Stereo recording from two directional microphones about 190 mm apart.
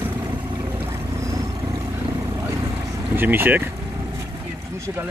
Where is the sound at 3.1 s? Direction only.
10° right (ahead or behind).